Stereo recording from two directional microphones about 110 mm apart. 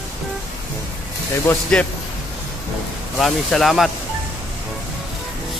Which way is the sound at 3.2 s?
Centre (ahead or behind).